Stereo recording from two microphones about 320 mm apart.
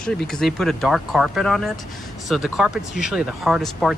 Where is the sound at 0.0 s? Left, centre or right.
Centre.